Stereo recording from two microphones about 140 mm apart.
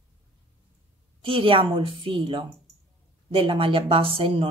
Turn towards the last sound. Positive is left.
turn(degrees=-40)  # may be behind; listen again after turning